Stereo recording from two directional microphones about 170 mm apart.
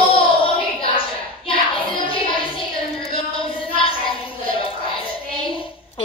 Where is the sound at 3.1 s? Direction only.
30° left (ahead or behind).